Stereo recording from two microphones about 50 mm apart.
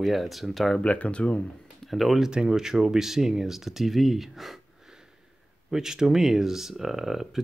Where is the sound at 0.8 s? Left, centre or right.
Left.